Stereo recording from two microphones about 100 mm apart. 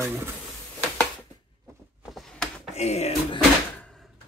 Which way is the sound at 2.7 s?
90° left.